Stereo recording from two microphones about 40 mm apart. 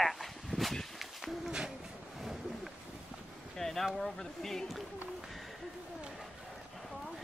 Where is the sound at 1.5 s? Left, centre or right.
Centre.